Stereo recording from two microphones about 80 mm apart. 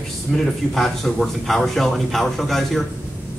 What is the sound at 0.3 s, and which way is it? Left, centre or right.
A man's voice, centre.